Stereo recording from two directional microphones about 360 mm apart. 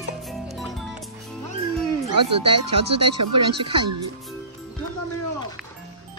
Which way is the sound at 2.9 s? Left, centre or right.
Right.